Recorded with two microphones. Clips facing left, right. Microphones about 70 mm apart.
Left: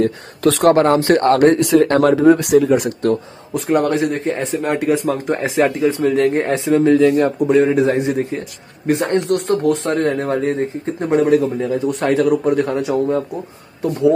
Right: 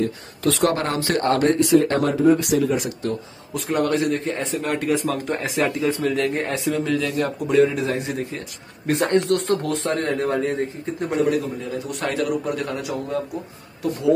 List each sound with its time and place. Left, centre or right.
0.0 s speech: left
0.7 s speech: left
1.2 s speech: left
3.5 s speech: left
8.8 s speech: centre
9.3 s speech: left
11.1 s a man's voice: left
11.7 s speech: left